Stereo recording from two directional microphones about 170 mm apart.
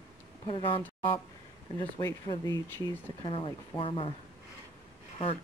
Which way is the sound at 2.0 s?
20° left (ahead or behind).